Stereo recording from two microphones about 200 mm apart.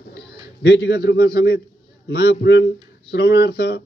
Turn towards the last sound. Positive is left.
turn(degrees=55)  # may be behind; listen again after turning